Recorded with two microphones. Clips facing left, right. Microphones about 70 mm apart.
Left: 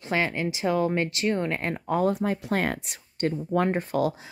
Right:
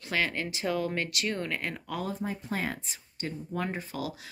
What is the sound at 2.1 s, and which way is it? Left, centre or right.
Speech, left.